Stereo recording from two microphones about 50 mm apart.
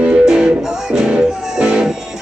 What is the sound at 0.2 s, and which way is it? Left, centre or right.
Music, centre.